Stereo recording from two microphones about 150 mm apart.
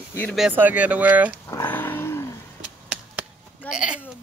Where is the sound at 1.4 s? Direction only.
20° left (ahead or behind).